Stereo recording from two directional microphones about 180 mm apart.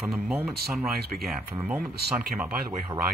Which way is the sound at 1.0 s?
60° right (ahead or behind).